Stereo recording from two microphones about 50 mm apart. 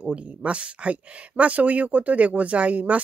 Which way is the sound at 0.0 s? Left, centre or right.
Right.